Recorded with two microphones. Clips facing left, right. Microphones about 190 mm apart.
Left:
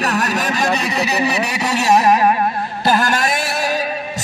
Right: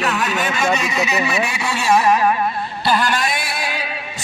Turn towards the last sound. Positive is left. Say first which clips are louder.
# left 6 dB
turn(degrees=45)  # may be behind; listen again after turning